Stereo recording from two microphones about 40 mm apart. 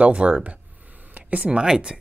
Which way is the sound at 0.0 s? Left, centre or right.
Right.